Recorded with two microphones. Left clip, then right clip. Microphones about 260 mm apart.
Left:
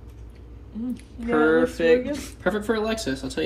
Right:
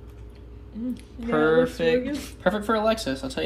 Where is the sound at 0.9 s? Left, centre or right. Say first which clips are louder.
Left 2 dB; centre.